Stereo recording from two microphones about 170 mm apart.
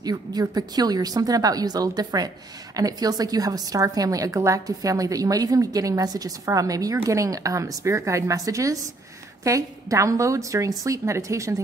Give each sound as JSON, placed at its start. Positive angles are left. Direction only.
{"t": 0.0, "sound": "a woman's voice", "side_deg": -20}